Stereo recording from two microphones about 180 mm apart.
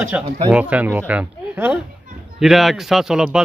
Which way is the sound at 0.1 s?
10° right (ahead or behind).